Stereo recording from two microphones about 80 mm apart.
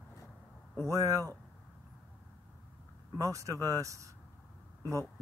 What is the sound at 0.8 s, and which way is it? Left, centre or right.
Speech, right.